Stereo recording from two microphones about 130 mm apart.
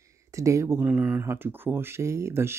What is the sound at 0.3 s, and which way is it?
Speech, 25° right (ahead or behind).